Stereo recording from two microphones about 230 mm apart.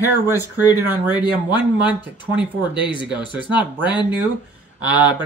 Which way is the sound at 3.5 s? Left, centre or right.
Centre.